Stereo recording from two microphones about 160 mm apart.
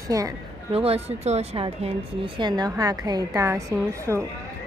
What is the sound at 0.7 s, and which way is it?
A woman's voice, 40° right (ahead or behind).